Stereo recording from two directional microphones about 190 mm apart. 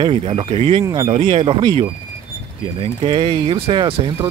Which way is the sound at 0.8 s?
15° right (ahead or behind).